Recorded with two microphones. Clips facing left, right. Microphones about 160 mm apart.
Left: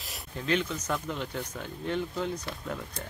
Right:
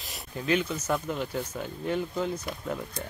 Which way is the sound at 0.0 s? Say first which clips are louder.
Right 2 dB; 5° right (ahead or behind).